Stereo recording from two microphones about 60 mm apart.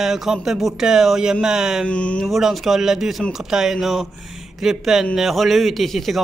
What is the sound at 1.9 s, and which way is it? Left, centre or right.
Speech, left.